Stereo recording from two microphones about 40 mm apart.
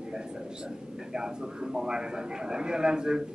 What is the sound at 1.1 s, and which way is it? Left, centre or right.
A man's voice, centre.